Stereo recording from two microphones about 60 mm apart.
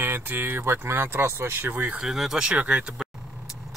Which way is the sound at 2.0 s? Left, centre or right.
Centre.